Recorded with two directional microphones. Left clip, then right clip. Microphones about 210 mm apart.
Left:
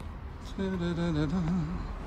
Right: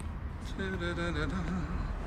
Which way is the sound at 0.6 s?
15° left (ahead or behind).